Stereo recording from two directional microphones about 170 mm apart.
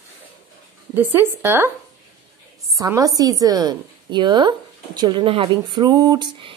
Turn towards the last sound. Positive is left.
turn(degrees=-30)  # may be behind; listen again after turning